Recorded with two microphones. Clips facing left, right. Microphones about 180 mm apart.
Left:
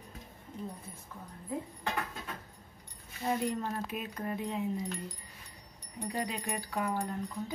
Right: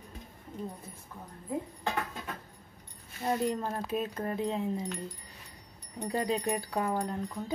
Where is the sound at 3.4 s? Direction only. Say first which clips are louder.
Right 2 dB; 40° right (ahead or behind).